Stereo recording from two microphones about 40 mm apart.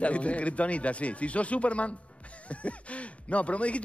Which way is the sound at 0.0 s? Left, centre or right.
Left.